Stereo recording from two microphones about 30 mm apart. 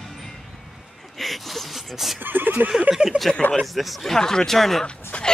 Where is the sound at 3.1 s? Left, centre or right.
Right.